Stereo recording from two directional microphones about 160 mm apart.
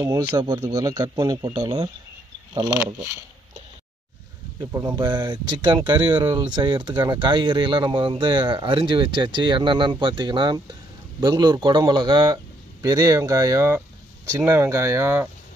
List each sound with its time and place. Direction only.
0.4 s speech: 25° right (ahead or behind)
4.6 s speech: 20° right (ahead or behind)